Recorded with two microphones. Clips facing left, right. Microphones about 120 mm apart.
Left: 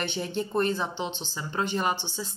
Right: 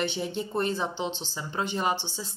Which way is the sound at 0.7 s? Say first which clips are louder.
Right 1 dB; 30° right (ahead or behind).